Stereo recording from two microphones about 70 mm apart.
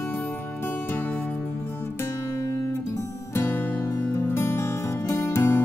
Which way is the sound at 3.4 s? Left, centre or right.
Left.